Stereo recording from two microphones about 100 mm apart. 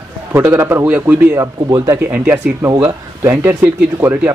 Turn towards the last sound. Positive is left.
turn(degrees=-20)  # may be behind; listen again after turning